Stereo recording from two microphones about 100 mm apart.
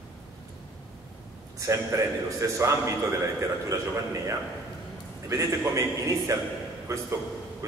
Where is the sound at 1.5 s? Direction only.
30° right (ahead or behind).